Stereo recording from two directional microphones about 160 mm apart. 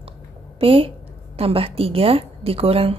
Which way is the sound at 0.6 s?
35° right (ahead or behind).